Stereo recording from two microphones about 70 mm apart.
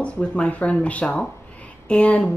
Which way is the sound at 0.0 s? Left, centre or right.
Centre.